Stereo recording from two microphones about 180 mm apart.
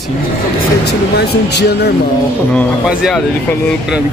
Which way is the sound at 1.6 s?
65° left (ahead or behind).